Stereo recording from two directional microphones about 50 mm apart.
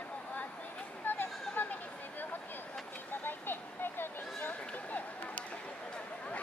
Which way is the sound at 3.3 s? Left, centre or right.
Left.